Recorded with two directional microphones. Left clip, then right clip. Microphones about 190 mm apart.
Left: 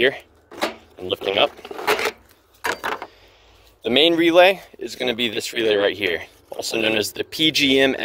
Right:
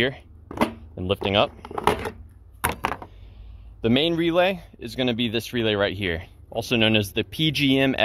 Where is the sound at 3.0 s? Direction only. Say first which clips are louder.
Left 6 dB; 15° left (ahead or behind).